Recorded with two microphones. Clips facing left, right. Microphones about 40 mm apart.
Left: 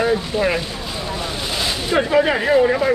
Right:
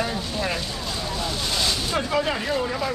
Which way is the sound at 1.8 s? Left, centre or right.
Left.